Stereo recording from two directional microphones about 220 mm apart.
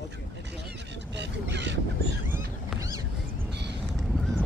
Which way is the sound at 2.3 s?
15° right (ahead or behind).